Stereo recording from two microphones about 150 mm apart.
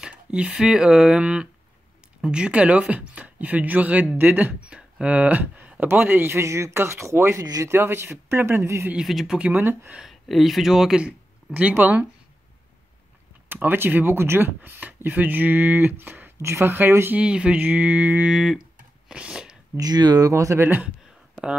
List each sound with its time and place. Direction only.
0.0 s speech: 5° right (ahead or behind)
8.9 s speech: centre (ahead or behind)
13.5 s speech: 15° right (ahead or behind)
19.8 s speech: 25° right (ahead or behind)